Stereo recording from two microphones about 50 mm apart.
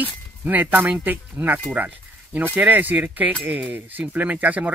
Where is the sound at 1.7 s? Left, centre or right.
Right.